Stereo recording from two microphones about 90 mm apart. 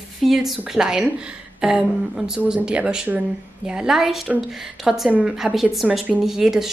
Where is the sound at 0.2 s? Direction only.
Centre (ahead or behind).